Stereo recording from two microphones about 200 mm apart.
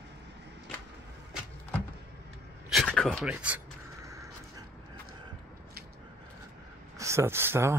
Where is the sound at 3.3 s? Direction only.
10° right (ahead or behind).